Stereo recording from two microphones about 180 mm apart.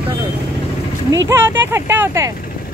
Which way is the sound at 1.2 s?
15° right (ahead or behind).